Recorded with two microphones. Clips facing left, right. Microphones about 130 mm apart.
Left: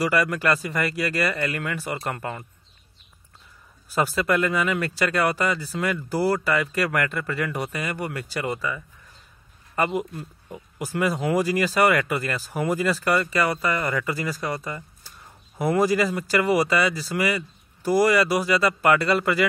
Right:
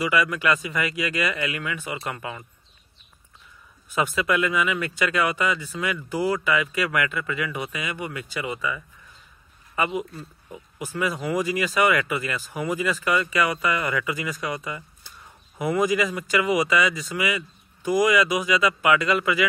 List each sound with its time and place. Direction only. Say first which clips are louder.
0.0 s speech: left 1 dB; 40° left (ahead or behind)
3.9 s speech: left 1 dB; 35° left (ahead or behind)
10.8 s speech: left 3 dB; 40° left (ahead or behind)